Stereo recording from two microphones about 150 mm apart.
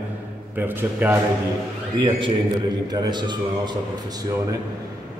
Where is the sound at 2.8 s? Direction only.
30° right (ahead or behind).